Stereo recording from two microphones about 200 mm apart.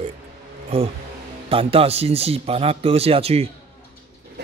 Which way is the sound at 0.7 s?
30° right (ahead or behind).